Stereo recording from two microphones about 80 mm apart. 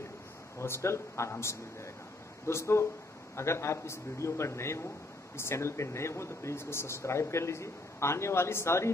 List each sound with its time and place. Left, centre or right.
0.6 s speech: left